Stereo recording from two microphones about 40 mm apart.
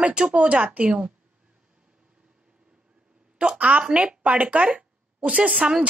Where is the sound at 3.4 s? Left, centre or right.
Right.